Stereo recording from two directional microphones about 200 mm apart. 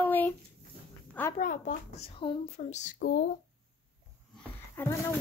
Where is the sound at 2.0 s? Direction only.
25° left (ahead or behind).